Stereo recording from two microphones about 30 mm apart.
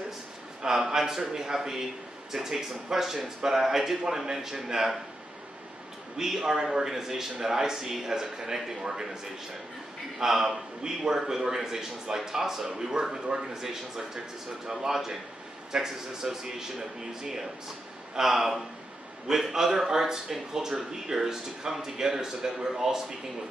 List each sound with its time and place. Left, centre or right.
0.7 s speech: centre
6.4 s speech: centre
10.8 s speech: right
11.1 s speech: centre